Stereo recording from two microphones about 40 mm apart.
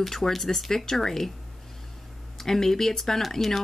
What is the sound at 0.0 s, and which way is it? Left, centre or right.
Speech, centre.